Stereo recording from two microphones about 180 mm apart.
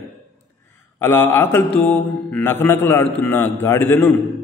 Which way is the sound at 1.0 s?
15° left (ahead or behind).